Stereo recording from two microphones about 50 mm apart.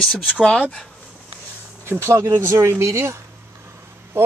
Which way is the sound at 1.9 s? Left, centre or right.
Right.